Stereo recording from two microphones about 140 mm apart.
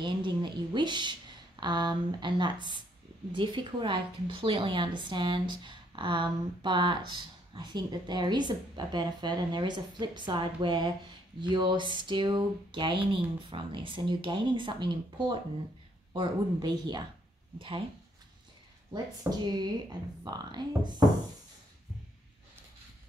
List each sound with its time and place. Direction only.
0.0 s a sound: 35° right (ahead or behind)
1.6 s a woman's voice: 30° right (ahead or behind)
19.2 s a woman's voice: 30° right (ahead or behind)